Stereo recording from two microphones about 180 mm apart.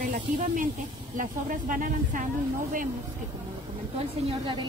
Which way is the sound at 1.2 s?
50° right (ahead or behind).